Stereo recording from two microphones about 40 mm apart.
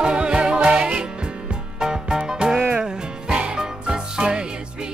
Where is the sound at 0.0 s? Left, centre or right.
Right.